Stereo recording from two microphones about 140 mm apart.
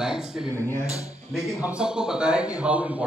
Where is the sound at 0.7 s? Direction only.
25° left (ahead or behind).